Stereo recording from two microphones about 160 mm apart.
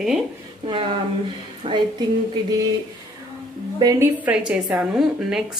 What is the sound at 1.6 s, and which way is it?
Speech, 30° right (ahead or behind).